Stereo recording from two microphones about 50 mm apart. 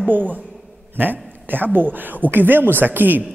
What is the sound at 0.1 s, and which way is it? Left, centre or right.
A man's voice, right.